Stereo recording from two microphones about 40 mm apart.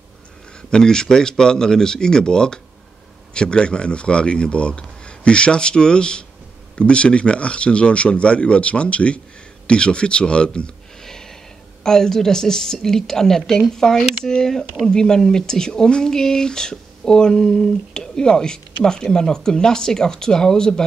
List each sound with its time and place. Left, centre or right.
0.6 s speech: centre
11.0 s a sound: centre
11.8 s speech: centre